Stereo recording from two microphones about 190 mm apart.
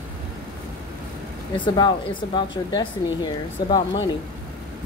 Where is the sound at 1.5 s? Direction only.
25° left (ahead or behind).